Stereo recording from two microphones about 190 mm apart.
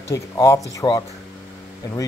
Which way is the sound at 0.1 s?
15° left (ahead or behind).